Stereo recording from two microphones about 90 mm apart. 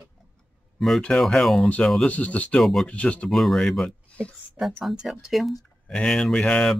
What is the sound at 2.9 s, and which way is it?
Speech, 15° left (ahead or behind).